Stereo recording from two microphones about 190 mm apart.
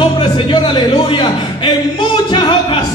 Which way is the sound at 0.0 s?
25° left (ahead or behind).